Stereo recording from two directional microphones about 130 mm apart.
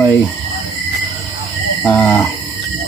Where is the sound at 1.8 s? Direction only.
20° left (ahead or behind).